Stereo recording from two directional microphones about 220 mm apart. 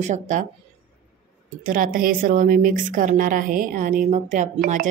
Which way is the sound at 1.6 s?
40° right (ahead or behind).